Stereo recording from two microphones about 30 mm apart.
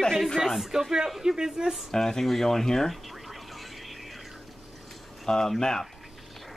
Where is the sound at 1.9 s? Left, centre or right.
Centre.